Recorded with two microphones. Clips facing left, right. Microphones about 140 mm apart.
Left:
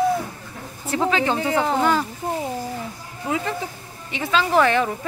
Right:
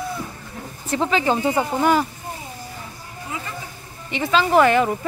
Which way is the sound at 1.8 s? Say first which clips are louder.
Right 2 dB; 10° right (ahead or behind).